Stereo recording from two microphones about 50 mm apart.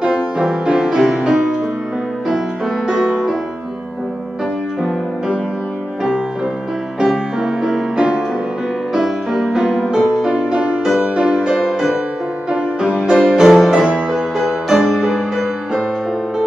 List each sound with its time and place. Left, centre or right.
0.0 s music: centre
2.9 s music: centre
7.1 s music: centre
8.9 s music: centre; by 11.4 s right
11.4 s music: centre